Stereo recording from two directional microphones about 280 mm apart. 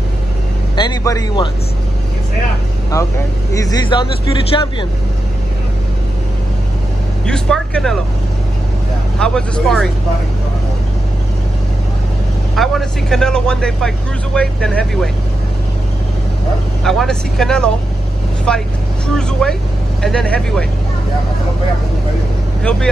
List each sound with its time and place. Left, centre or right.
0.7 s a man's voice: centre
3.5 s speech: centre
7.2 s speech: centre
9.2 s speech: centre
12.5 s speech: centre
16.8 s speech: centre
22.6 s speech: centre